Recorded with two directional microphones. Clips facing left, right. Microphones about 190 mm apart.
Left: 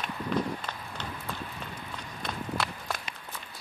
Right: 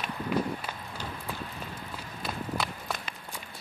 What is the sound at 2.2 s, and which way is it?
Walk, centre (ahead or behind).